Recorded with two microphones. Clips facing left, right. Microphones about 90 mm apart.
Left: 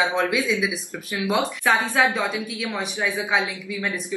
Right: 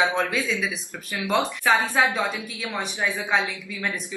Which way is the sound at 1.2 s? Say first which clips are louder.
Even; 5° left (ahead or behind).